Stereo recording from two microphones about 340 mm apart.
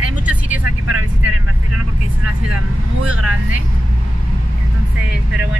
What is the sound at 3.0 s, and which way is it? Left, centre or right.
Speech, right.